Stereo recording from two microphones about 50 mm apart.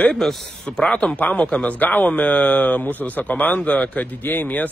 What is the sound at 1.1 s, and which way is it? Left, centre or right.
Speech, left.